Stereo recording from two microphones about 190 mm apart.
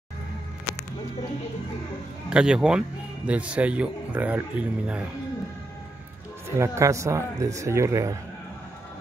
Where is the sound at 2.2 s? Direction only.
5° right (ahead or behind).